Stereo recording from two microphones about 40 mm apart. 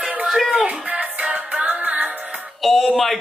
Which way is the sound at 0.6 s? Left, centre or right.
Right.